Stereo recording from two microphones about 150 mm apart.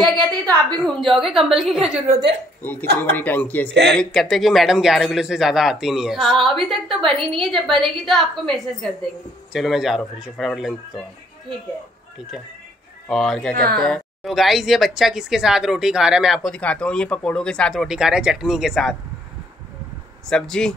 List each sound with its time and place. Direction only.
0.0 s a woman's voice: 5° left (ahead or behind)
2.6 s speech: 15° left (ahead or behind)
13.1 s speech: 5° left (ahead or behind)
20.2 s speech: 5° left (ahead or behind)